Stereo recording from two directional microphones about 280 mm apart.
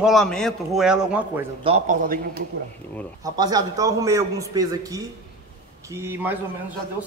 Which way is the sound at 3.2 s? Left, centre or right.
Centre.